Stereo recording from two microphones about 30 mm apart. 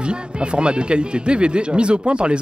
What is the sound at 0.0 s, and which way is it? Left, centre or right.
Speech, right.